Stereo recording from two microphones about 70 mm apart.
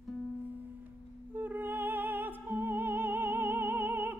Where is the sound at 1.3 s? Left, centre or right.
Right.